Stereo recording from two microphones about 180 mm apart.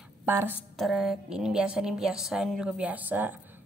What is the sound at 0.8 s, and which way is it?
A woman's voice, centre (ahead or behind).